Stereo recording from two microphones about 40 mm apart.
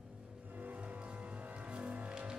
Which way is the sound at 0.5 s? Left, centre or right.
Right.